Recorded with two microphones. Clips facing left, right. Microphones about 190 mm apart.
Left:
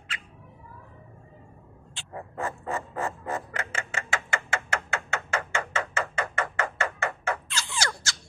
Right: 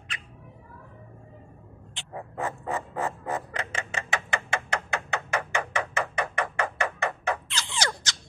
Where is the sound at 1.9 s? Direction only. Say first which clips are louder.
Right 1 dB; 15° right (ahead or behind).